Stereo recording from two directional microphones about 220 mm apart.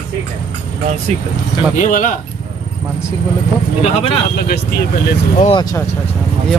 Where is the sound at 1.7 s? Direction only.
35° left (ahead or behind).